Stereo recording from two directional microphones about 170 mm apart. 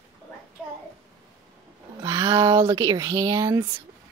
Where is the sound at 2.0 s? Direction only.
20° right (ahead or behind).